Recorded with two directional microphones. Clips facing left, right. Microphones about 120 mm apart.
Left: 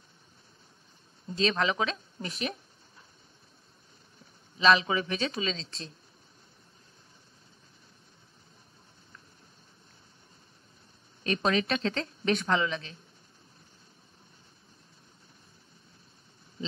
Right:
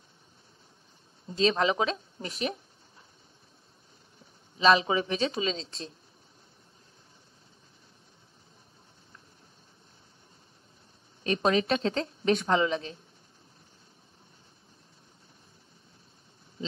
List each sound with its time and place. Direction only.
1.3 s speech: 30° right (ahead or behind)
4.6 s speech: 30° right (ahead or behind)
11.2 s speech: 30° right (ahead or behind)